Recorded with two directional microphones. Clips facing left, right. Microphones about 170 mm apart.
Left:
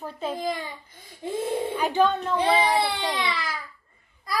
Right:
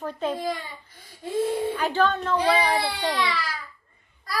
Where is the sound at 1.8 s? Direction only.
15° left (ahead or behind).